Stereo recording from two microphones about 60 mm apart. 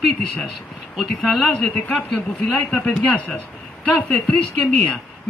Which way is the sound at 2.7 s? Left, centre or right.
Left.